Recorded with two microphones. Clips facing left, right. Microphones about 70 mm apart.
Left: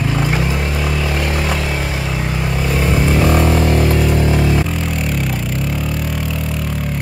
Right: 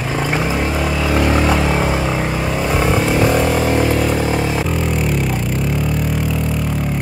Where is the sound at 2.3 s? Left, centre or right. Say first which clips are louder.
Right 1 dB; centre.